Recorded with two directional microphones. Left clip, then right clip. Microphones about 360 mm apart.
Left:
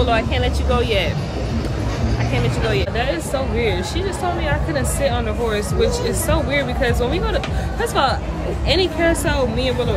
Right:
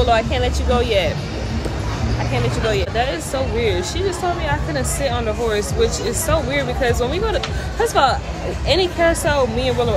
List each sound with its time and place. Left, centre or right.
0.0 s speech: centre
2.3 s speech: centre